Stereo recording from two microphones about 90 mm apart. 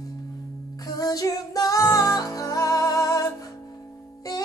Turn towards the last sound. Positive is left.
turn(degrees=40)  # may be behind; listen again after turning